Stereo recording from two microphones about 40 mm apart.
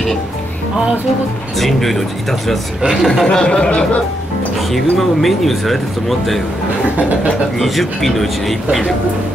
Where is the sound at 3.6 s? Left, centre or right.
Left.